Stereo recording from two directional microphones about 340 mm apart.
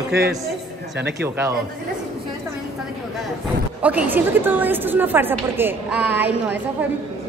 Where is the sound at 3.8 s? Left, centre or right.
Centre.